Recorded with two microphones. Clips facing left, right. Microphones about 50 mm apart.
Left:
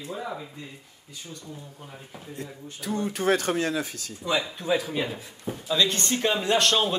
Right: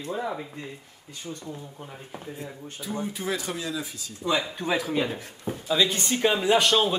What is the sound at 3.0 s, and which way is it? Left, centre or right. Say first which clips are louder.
Speech: left 7 dB; left.